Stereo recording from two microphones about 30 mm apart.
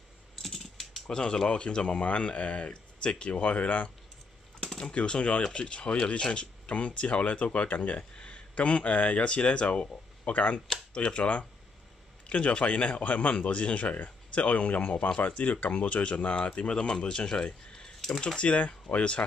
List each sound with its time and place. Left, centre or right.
0.4 s typing: centre
1.0 s speech: left
3.3 s speech: left
4.9 s speech: left
6.7 s speech: left
18.2 s speech: left